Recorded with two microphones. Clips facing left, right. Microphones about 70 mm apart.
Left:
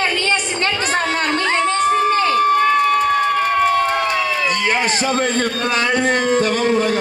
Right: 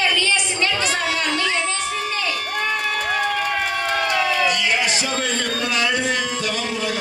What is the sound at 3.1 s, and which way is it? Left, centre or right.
Crowd, left.